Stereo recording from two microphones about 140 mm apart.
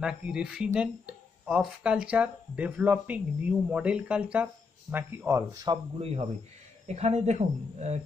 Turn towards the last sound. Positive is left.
turn(degrees=-55)  # may be behind; listen again after turning